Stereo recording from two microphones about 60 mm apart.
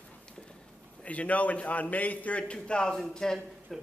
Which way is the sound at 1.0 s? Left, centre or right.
Left.